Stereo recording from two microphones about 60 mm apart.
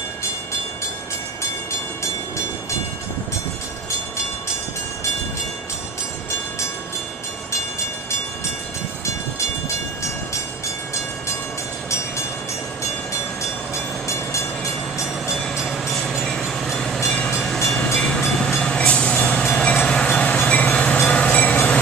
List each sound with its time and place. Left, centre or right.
15.0 s train: centre
15.4 s train: centre
17.9 s train: centre